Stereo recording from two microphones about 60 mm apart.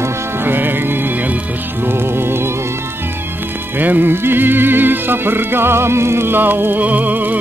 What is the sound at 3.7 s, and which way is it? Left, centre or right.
Music, right.